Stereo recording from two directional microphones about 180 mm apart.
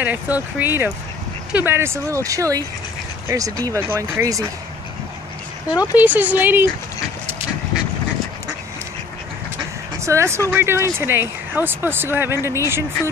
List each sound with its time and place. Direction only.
0.0 s speech: 10° right (ahead or behind)
5.7 s speech: 20° left (ahead or behind)
5.9 s speech: 10° right (ahead or behind)
9.9 s speech: 15° right (ahead or behind)